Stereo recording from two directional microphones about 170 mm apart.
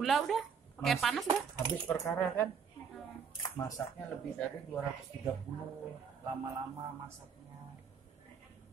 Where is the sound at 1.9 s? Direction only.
10° left (ahead or behind).